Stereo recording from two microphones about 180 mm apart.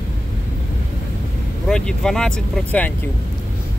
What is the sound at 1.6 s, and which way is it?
Speech, 5° left (ahead or behind).